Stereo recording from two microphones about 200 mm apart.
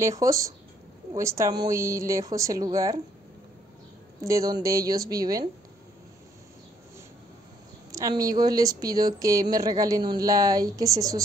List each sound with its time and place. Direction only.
0.0 s speech: 15° right (ahead or behind)
4.2 s speech: 15° right (ahead or behind)
7.9 s speech: 15° right (ahead or behind)